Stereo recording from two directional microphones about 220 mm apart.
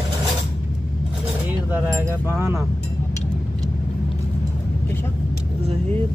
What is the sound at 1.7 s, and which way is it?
Speech, 10° right (ahead or behind).